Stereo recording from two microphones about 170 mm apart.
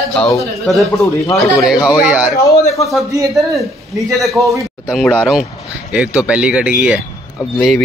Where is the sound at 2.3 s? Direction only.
20° left (ahead or behind).